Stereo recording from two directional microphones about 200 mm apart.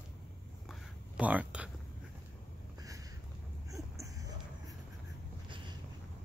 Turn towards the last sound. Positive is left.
turn(degrees=-25)  # may be behind; listen again after turning